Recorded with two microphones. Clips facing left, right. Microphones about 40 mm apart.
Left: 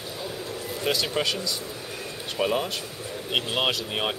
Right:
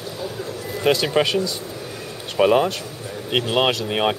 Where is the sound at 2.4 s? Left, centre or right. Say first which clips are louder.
Right 9 dB; right.